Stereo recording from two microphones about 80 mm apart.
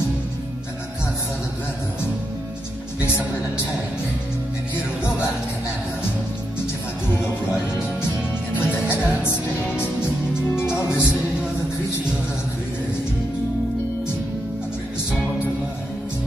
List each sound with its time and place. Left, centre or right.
8.5 s music: left
10.5 s music: left